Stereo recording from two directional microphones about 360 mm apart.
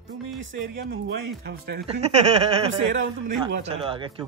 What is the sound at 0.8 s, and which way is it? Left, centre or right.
Speech, right.